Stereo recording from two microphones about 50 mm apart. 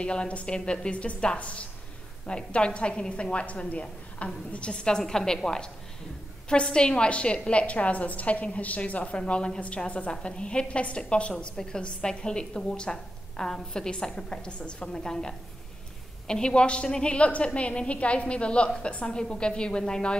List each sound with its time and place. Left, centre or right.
0.0 s a woman's voice: left